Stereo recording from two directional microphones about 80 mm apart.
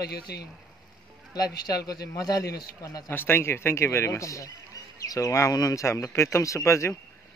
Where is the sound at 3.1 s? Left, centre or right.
Left.